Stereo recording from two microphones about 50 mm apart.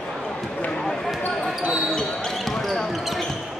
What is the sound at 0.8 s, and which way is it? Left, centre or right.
Basketball bounce, centre.